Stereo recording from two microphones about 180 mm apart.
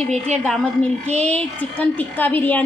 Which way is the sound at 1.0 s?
35° right (ahead or behind).